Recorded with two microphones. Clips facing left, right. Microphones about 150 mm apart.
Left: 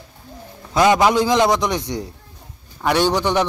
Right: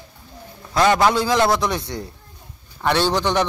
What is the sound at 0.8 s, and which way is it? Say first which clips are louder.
A man's voice: left 2 dB; 15° left (ahead or behind).